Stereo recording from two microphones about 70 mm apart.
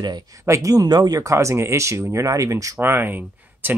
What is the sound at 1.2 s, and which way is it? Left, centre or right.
Speech, right.